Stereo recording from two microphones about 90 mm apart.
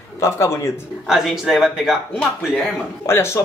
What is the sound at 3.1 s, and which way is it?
Speech, 30° left (ahead or behind).